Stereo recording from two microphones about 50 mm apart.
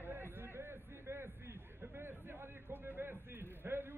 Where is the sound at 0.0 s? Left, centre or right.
Right.